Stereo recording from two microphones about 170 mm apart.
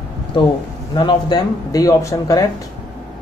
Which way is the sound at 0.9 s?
25° left (ahead or behind).